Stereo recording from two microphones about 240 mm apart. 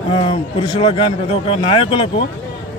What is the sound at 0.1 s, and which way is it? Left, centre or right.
Speech, left.